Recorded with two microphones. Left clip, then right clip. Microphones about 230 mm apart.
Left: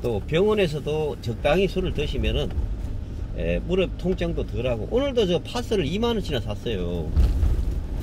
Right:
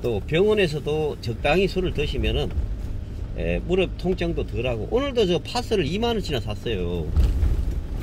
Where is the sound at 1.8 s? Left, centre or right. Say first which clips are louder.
Right 2 dB; centre.